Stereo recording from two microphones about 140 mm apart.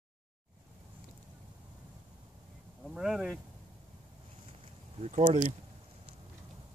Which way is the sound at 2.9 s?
5° right (ahead or behind).